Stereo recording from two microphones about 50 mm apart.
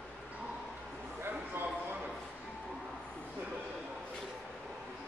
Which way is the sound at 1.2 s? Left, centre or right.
Right.